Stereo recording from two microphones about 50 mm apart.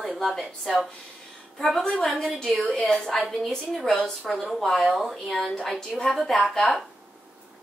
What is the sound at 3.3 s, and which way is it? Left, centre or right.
A woman's voice, centre.